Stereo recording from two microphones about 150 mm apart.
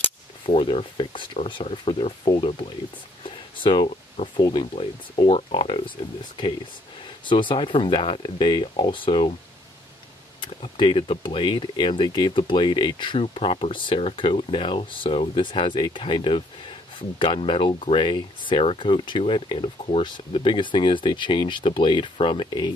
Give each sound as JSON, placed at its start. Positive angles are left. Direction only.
{"t": 0.5, "sound": "speech", "side_deg": 35}
{"t": 10.4, "sound": "speech", "side_deg": 35}